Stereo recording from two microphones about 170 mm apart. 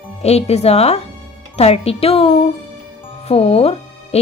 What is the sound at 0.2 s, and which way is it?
A woman's voice, 40° left (ahead or behind).